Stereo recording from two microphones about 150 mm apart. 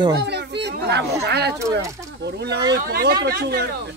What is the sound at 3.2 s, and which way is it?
Speech, 90° right.